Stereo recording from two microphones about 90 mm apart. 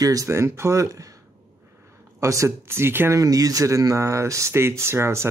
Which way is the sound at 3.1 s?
40° right (ahead or behind).